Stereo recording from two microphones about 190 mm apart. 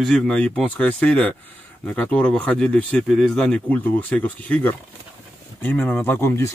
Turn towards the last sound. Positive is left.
turn(degrees=15)  # may be behind; listen again after turning